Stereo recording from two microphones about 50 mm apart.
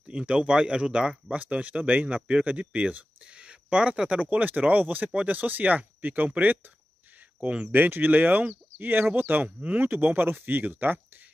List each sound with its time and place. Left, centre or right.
0.1 s speech: right
1.4 s speech: right
4.2 s speech: right
7.4 s speech: right
7.7 s speech: right